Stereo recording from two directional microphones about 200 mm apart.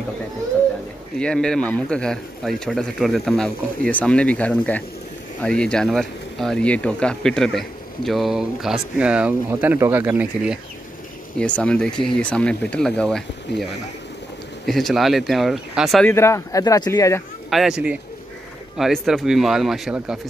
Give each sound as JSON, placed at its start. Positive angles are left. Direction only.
{"t": 1.1, "sound": "speech", "side_deg": 5}
{"t": 11.3, "sound": "speech", "side_deg": 5}
{"t": 14.7, "sound": "speech", "side_deg": 0}
{"t": 16.1, "sound": "speech", "side_deg": 15}
{"t": 17.5, "sound": "speech", "side_deg": 0}